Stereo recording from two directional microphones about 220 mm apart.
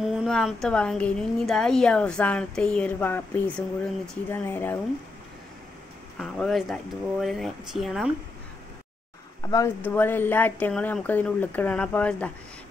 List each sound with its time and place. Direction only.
0.1 s a woman's voice: centre (ahead or behind)
6.1 s a woman's voice: centre (ahead or behind)
9.4 s speech: 15° left (ahead or behind)